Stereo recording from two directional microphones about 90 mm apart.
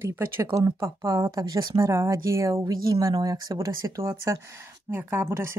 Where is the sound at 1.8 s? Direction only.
35° right (ahead or behind).